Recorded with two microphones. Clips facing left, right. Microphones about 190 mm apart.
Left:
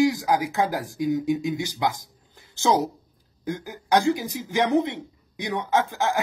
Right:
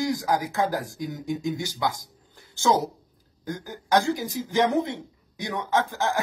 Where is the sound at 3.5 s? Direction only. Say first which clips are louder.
Left 1 dB; 15° left (ahead or behind).